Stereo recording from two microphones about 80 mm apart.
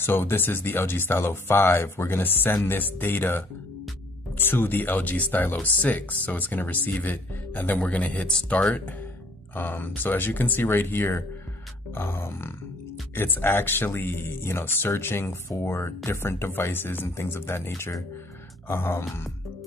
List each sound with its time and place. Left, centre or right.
0.0 s speech: left